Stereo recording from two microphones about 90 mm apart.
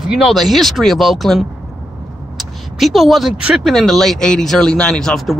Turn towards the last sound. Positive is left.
turn(degrees=5)  # may be behind; listen again after turning